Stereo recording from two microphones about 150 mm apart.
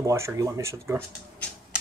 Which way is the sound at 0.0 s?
20° right (ahead or behind).